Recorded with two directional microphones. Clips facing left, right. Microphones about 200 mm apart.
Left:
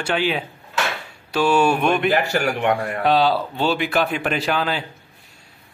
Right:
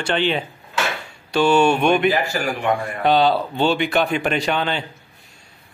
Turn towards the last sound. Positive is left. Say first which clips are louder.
# right 1 dB
turn(degrees=5)  # may be behind; listen again after turning